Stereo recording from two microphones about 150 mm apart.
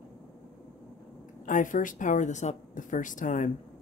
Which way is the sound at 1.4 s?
60° left (ahead or behind).